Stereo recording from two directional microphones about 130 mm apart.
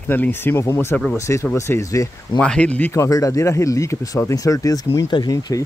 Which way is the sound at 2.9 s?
25° left (ahead or behind).